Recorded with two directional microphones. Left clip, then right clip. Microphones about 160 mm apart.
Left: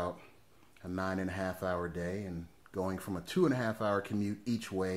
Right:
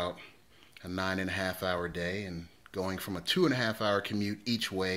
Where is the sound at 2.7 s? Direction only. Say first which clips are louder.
Right 2 dB; 20° right (ahead or behind).